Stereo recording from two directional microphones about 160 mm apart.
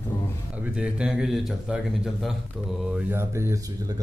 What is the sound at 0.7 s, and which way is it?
Speech, 5° right (ahead or behind).